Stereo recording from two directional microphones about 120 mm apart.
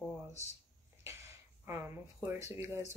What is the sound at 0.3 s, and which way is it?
Speech, 65° left (ahead or behind).